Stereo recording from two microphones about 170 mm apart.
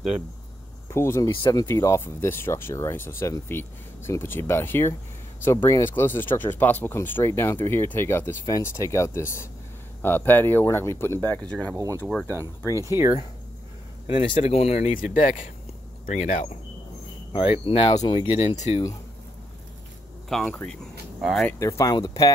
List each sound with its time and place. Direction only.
0.8 s speech: 15° left (ahead or behind)
11.7 s speech: 20° right (ahead or behind)
12.0 s speech: 5° left (ahead or behind)
14.0 s speech: 30° left (ahead or behind)
15.0 s speech: 50° left (ahead or behind)
17.3 s speech: 30° left (ahead or behind)
20.2 s speech: 5° left (ahead or behind)
21.5 s speech: 20° left (ahead or behind)